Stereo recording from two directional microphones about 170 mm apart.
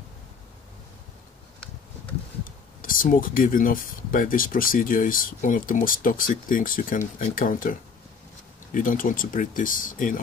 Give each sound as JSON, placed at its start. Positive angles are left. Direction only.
{"t": 2.8, "sound": "speech", "side_deg": 55}
{"t": 8.7, "sound": "speech", "side_deg": 55}